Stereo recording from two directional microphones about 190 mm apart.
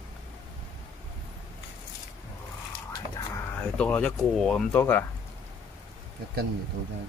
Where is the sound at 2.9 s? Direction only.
20° left (ahead or behind).